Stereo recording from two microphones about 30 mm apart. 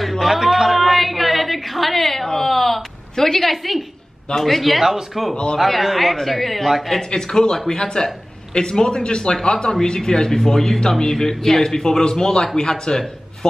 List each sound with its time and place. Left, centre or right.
0.2 s a sound: centre
4.4 s a woman's voice: centre
4.8 s speech: centre
5.3 s speech: left
5.6 s a woman's voice: centre
7.0 s speech: centre